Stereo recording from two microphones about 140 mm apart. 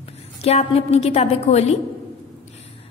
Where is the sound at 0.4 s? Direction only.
45° left (ahead or behind).